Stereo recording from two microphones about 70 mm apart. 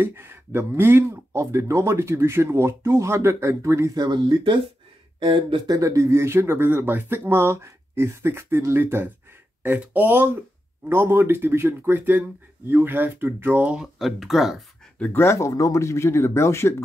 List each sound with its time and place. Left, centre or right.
0.0 s speech: right
3.9 s speech: right
5.7 s speech: right
13.7 s speech: centre
15.1 s speech: left